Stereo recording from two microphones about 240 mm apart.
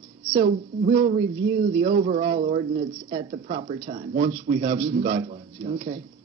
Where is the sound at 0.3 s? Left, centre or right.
Right.